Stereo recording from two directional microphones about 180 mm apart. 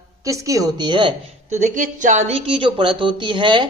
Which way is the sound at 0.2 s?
20° right (ahead or behind).